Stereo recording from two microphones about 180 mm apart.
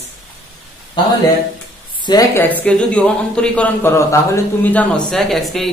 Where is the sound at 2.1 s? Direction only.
15° left (ahead or behind).